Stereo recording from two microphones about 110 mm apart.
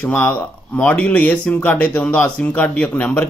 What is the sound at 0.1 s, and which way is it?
Speech, 15° left (ahead or behind).